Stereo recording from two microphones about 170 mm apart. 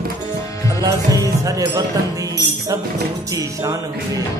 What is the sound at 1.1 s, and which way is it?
Speech, 20° right (ahead or behind).